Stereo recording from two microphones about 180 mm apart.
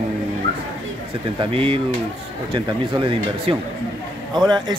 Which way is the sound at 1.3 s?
30° right (ahead or behind).